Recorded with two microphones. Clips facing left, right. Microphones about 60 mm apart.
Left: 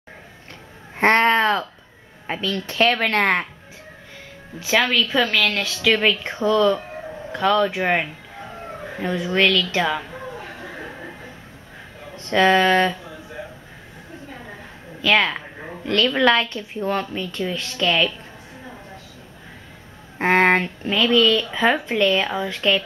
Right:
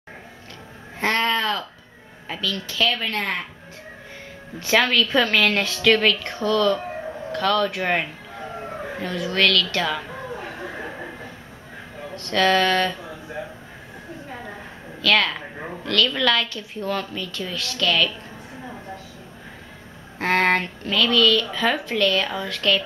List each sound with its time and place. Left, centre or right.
0.9 s a woman's voice: left
2.7 s a woman's voice: left
4.6 s a woman's voice: centre
12.3 s a woman's voice: centre
15.0 s a sound: centre
16.2 s a woman's voice: left
20.2 s a woman's voice: centre
20.8 s a woman's voice: centre